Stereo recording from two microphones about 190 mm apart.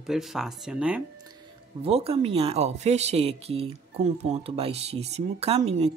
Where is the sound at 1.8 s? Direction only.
30° right (ahead or behind).